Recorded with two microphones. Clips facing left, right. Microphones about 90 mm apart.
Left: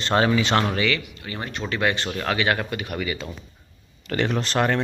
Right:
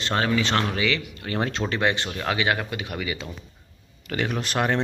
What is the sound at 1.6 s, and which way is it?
Speech, 35° right (ahead or behind).